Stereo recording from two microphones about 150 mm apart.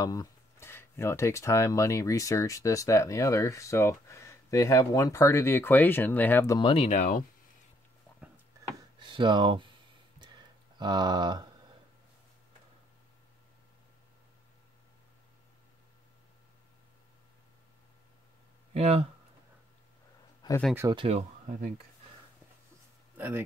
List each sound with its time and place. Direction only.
0.0 s speech: 25° left (ahead or behind)
6.6 s speech: 40° left (ahead or behind)
9.0 s speech: 30° right (ahead or behind)
10.8 s speech: 30° right (ahead or behind)
18.7 s speech: 45° right (ahead or behind)
20.9 s speech: 35° right (ahead or behind)
23.1 s speech: 10° right (ahead or behind)